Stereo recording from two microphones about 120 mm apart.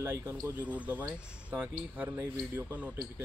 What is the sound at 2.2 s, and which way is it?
Speech, 25° right (ahead or behind).